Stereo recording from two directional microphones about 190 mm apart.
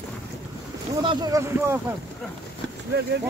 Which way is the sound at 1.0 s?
25° right (ahead or behind).